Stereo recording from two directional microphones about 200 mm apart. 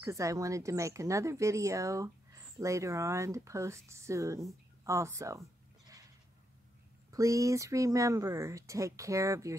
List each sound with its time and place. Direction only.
0.0 s speech: 15° right (ahead or behind)
7.1 s speech: 15° right (ahead or behind)